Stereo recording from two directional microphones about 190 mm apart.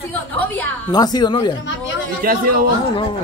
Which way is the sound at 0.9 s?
20° left (ahead or behind).